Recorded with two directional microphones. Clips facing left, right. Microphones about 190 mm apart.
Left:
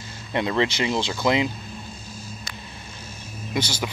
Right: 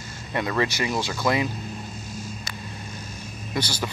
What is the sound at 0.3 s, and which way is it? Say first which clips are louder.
Speech: left 2 dB; 20° left (ahead or behind).